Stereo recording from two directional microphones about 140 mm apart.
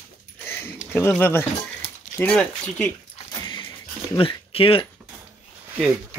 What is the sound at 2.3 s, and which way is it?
Speech, 5° left (ahead or behind).